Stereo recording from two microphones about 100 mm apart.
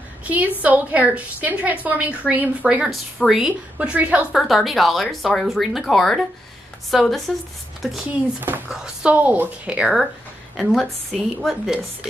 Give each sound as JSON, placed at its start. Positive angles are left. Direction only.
{"t": 0.2, "sound": "a woman's voice", "side_deg": -15}
{"t": 2.9, "sound": "a woman's voice", "side_deg": -5}
{"t": 4.3, "sound": "speech", "side_deg": 0}
{"t": 8.1, "sound": "speech", "side_deg": -20}
{"t": 8.6, "sound": "a woman's voice", "side_deg": -5}
{"t": 10.5, "sound": "speech", "side_deg": 0}